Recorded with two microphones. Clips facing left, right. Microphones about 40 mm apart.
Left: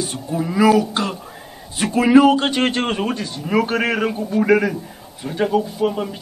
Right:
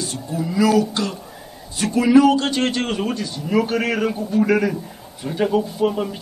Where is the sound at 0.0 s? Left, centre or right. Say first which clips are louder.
Left 2 dB; left.